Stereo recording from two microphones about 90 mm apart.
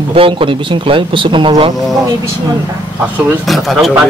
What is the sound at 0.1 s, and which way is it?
Speech, 85° right.